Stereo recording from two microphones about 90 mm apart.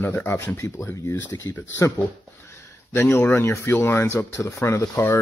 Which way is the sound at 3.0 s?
25° left (ahead or behind).